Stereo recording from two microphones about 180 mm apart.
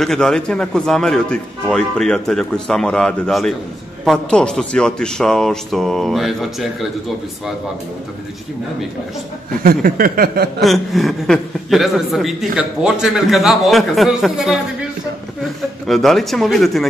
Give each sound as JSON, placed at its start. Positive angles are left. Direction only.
{"t": 0.0, "sound": "a woman's voice", "side_deg": 0}
{"t": 9.6, "sound": "a sound", "side_deg": -55}
{"t": 10.6, "sound": "a woman's voice", "side_deg": 0}
{"t": 15.9, "sound": "a woman's voice", "side_deg": 0}